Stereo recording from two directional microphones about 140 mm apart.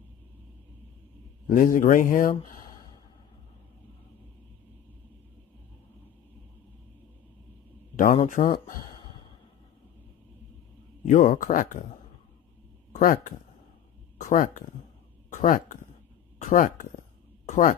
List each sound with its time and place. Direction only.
1.5 s speech: 65° left (ahead or behind)
7.9 s a sound: 75° left (ahead or behind)
8.3 s speech: 70° left (ahead or behind)
11.1 s speech: 65° left (ahead or behind)
13.0 s speech: 75° left (ahead or behind)
17.5 s a sound: 70° left (ahead or behind)